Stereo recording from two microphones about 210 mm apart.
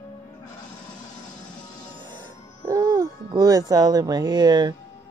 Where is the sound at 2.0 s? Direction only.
20° right (ahead or behind).